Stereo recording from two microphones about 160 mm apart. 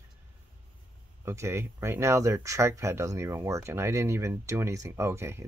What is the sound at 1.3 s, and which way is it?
Speech, 15° right (ahead or behind).